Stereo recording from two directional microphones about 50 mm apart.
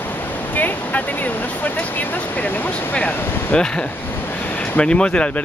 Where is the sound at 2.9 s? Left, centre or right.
Left.